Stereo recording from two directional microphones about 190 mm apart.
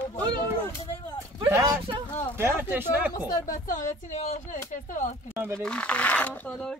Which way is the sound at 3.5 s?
45° left (ahead or behind).